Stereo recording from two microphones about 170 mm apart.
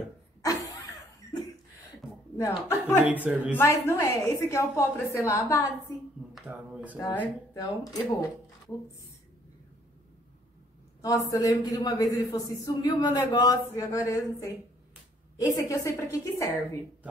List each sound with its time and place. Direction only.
0.4 s a sound: 20° left (ahead or behind)
1.2 s chuckle: 20° left (ahead or behind)
2.3 s a woman's voice: 15° left (ahead or behind)
6.3 s speech: 5° right (ahead or behind)
7.5 s a man's voice: 20° left (ahead or behind)
11.0 s a man's voice: 20° left (ahead or behind)